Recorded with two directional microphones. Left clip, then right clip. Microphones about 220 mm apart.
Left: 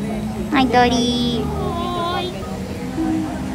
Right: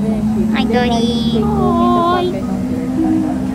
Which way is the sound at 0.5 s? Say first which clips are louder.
Left 3 dB; 15° left (ahead or behind).